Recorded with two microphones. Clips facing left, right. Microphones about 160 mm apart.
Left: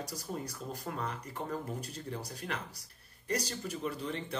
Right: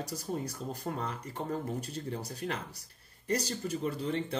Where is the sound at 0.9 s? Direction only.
35° right (ahead or behind).